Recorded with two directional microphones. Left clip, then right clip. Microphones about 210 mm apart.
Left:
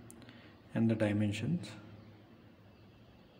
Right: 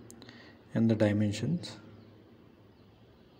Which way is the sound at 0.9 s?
15° right (ahead or behind).